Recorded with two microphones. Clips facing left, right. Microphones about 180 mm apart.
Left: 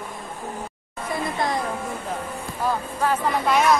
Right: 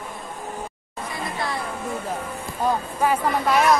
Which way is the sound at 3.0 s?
10° right (ahead or behind).